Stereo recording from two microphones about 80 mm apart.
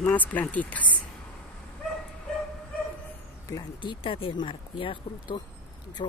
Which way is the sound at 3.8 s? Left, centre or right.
Left.